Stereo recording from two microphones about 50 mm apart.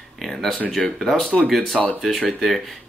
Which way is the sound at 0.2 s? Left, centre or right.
Centre.